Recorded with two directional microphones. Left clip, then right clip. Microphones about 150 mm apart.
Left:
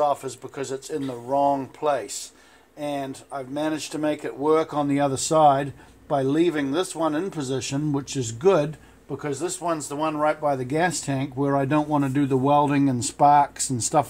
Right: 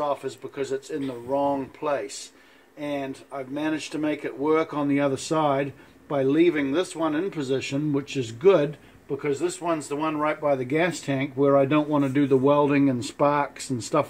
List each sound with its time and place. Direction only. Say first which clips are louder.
0.0 s speech: left 4 dB; 40° left (ahead or behind)
9.1 s speech: right 2 dB; 25° left (ahead or behind)